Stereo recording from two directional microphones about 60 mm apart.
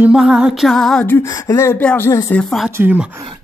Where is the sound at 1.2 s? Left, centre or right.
Left.